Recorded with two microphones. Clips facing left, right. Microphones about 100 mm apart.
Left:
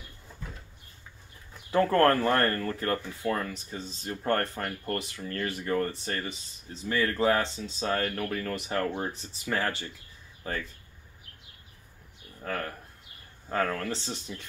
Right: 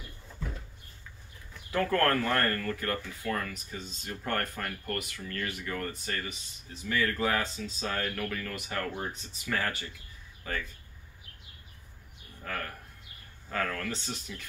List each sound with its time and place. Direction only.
1.7 s speech: 30° left (ahead or behind)
12.4 s speech: 25° left (ahead or behind)